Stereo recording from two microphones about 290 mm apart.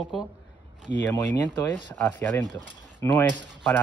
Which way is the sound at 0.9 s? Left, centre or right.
Centre.